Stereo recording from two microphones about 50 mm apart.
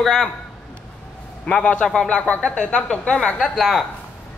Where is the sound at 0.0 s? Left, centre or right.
Centre.